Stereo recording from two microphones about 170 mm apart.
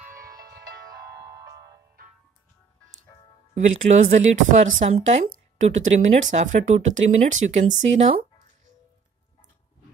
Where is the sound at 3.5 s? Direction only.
45° right (ahead or behind).